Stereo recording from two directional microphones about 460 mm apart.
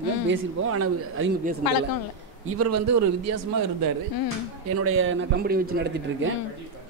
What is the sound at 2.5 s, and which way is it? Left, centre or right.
Speech, right.